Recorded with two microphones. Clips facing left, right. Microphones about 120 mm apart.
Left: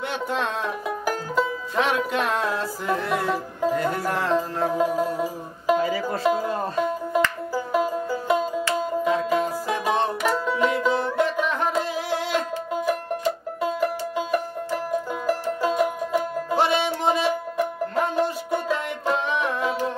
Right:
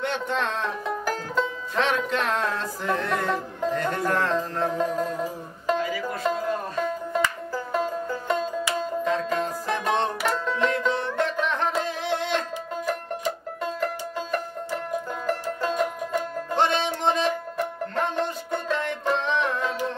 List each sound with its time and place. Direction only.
0.0 s speech: 5° left (ahead or behind)
5.8 s music: 30° left (ahead or behind)
6.2 s music: 5° left (ahead or behind)